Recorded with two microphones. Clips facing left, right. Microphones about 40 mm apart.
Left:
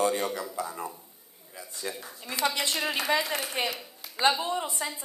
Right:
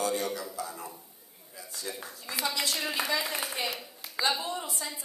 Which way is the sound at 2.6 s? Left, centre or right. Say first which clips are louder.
Left 3 dB; left.